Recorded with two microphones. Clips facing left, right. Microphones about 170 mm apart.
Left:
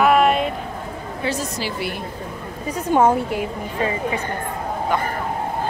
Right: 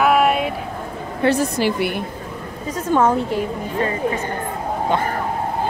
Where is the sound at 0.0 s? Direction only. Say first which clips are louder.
Even; 5° right (ahead or behind).